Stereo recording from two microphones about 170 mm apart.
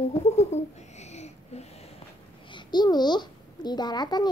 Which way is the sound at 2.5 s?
25° left (ahead or behind).